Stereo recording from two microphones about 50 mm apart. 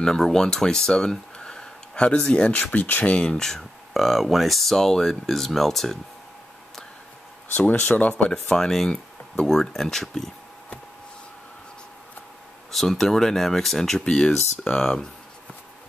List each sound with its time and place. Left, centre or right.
0.0 s speech: centre
2.6 s speech: left
3.2 s speech: centre
7.5 s speech: left
8.3 s speech: centre
12.7 s speech: centre